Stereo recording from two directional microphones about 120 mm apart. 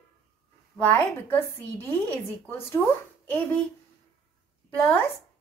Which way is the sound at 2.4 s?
20° left (ahead or behind).